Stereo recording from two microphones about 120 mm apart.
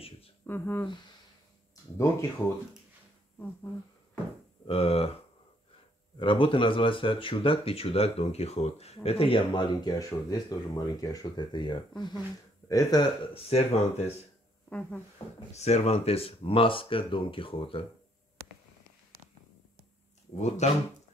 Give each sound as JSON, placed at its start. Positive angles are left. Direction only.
{"t": 0.5, "sound": "speech", "side_deg": 20}
{"t": 2.0, "sound": "speech", "side_deg": 20}
{"t": 4.6, "sound": "speech", "side_deg": 55}
{"t": 6.1, "sound": "speech", "side_deg": 45}
{"t": 13.3, "sound": "speech", "side_deg": 55}
{"t": 14.7, "sound": "speech", "side_deg": 10}
{"t": 15.2, "sound": "speech", "side_deg": 40}
{"t": 15.5, "sound": "speech", "side_deg": 65}
{"t": 20.3, "sound": "speech", "side_deg": 75}